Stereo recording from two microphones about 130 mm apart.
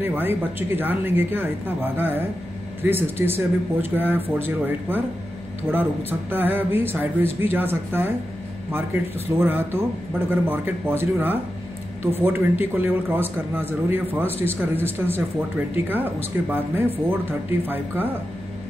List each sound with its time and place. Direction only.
0.0 s a man's voice: 15° right (ahead or behind)